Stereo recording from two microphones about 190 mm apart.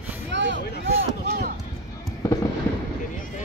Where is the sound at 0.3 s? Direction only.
75° right (ahead or behind).